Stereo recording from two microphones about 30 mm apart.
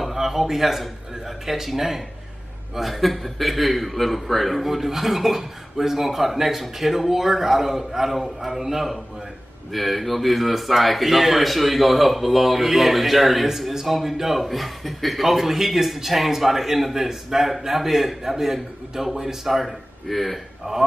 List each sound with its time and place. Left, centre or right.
0.1 s a man's voice: centre